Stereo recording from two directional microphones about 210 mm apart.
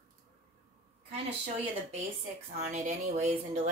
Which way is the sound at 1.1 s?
30° right (ahead or behind).